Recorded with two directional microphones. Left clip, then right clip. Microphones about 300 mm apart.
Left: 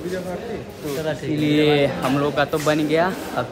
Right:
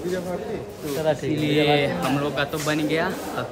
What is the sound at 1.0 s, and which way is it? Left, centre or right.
Speech, right.